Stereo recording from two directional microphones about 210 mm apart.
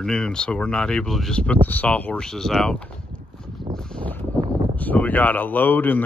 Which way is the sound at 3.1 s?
5° left (ahead or behind).